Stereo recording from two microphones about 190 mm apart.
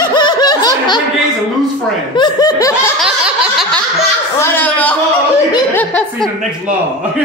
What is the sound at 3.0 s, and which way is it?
Snicker, centre (ahead or behind).